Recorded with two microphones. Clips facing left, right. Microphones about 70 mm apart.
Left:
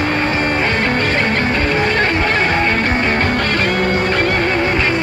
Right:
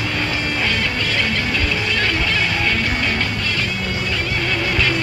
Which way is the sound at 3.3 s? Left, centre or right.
Left.